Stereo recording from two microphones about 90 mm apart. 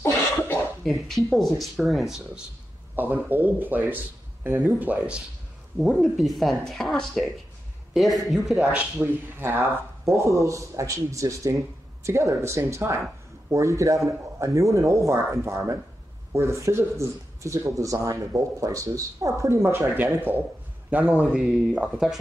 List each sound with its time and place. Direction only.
0.0 s cough: 30° left (ahead or behind)
0.8 s speech: 5° left (ahead or behind)
3.0 s speech: 20° right (ahead or behind)
5.8 s speech: centre (ahead or behind)
9.0 s a man's voice: 25° right (ahead or behind)
21.3 s speech: 5° right (ahead or behind)